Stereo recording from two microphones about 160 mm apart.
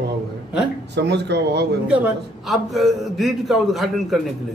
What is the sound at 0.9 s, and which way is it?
Speech, 90° right.